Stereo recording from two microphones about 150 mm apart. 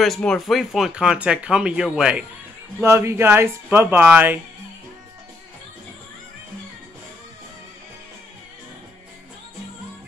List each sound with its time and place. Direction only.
0.0 s speech: 5° left (ahead or behind)
2.8 s speech: 20° right (ahead or behind)